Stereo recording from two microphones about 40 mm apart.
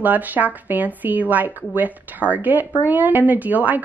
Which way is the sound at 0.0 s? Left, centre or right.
Right.